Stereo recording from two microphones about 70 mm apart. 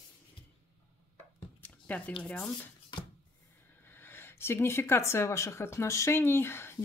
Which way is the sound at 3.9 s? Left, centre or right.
Left.